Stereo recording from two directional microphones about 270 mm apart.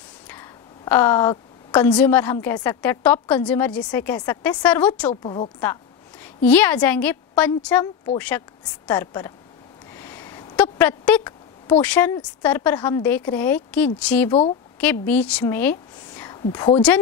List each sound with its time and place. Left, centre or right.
0.3 s a sound: centre
2.4 s a woman's voice: centre
5.1 s a woman's voice: centre
5.6 s a woman's voice: centre
9.9 s a sound: centre
11.8 s a woman's voice: centre